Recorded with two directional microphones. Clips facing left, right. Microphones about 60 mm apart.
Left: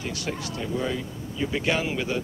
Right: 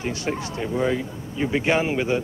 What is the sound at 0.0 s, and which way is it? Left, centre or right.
Speech, right.